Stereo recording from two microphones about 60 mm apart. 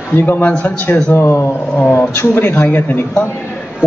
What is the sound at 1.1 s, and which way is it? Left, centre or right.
Speech, left.